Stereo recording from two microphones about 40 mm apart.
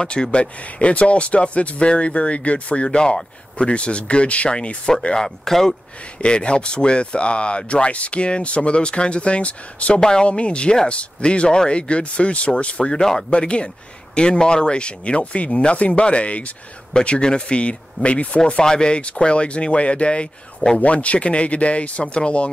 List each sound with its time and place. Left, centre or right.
0.0 s speech: left
6.2 s speech: left
9.9 s speech: centre
10.2 s speech: left
12.9 s speech: centre
13.3 s speech: left
18.4 s speech: centre
20.8 s speech: left